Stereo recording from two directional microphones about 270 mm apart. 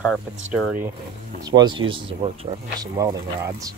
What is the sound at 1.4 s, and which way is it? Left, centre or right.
Speech, centre.